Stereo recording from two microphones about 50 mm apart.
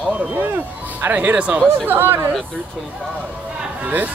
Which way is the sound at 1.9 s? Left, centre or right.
Right.